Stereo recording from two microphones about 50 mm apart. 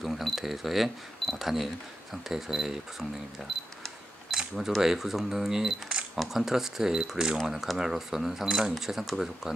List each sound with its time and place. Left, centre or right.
0.0 s speech: centre
4.6 s speech: centre
7.3 s speech: centre